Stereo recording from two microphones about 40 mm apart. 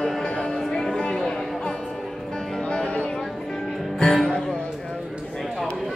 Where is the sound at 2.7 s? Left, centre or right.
Left.